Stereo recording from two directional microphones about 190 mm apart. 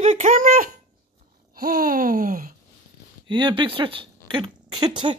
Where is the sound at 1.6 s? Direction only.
50° right (ahead or behind).